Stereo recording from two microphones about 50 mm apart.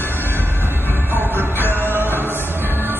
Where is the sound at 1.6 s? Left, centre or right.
Left.